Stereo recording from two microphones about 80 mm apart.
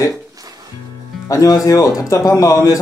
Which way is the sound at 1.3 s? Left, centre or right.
Left.